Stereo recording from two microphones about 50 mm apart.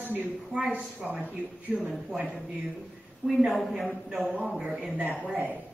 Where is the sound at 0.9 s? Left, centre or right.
Right.